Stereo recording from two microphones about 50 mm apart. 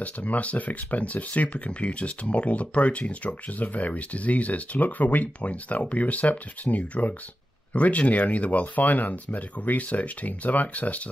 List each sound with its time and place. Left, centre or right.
0.0 s speech: left